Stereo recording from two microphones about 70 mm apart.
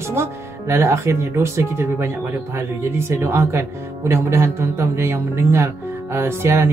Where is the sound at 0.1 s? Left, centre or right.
Right.